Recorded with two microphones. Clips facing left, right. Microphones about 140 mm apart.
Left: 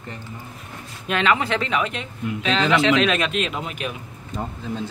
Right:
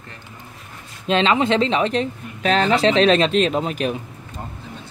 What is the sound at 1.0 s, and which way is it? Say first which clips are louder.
Speech: right 4 dB; 25° right (ahead or behind).